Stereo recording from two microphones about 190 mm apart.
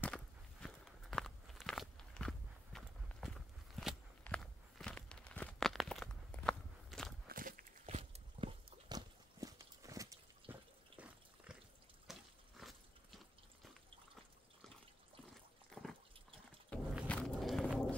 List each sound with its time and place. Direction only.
0.0 s walk: 5° left (ahead or behind)
7.2 s walk: 45° right (ahead or behind)
7.8 s horse: 30° right (ahead or behind)
10.5 s drip: 5° right (ahead or behind)
12.1 s a sound: centre (ahead or behind)
15.7 s dog: centre (ahead or behind)
16.7 s a sound: 5° left (ahead or behind)
17.1 s walk: 5° left (ahead or behind)